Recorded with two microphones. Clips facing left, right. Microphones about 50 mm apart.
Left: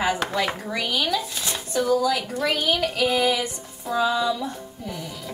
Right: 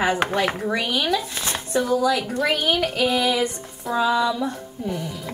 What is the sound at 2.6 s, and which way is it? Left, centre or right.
Child singing, right.